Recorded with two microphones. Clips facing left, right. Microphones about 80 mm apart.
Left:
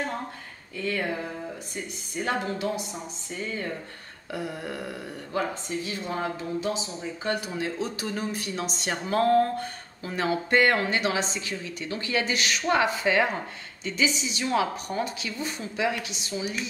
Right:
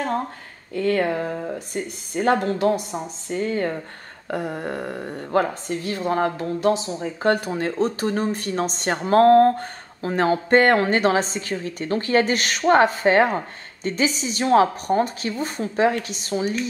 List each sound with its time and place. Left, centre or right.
0.7 s speech: right